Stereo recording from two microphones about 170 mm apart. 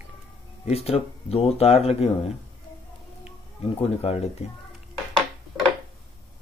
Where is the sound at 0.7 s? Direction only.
35° left (ahead or behind).